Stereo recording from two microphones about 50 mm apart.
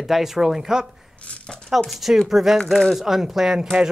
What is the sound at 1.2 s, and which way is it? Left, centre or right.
Speech, left.